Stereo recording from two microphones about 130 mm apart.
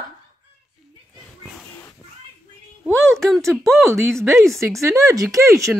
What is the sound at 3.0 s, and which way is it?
Speech, centre (ahead or behind).